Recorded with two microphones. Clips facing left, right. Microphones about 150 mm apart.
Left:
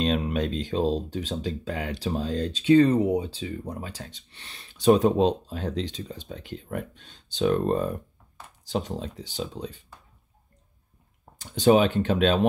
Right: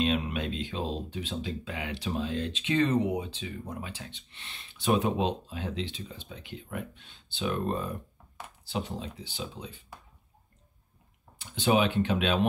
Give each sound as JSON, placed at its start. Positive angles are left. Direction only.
{"t": 0.0, "sound": "speech", "side_deg": 40}
{"t": 11.3, "sound": "speech", "side_deg": 40}